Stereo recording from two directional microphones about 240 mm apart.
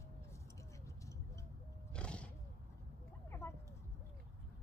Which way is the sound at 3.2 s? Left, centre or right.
Centre.